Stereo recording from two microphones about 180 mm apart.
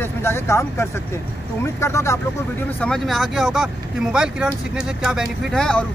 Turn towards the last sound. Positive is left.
turn(degrees=5)  # may be behind; listen again after turning